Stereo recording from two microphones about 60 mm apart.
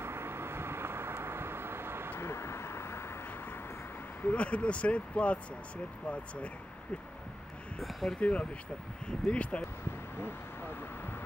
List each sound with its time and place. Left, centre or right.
0.0 s vehicle: right
2.1 s vehicle: left
4.2 s speech: left
7.8 s speech: centre
8.2 s speech: left